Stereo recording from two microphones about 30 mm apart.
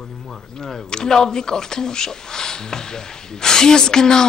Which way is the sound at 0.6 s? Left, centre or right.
Centre.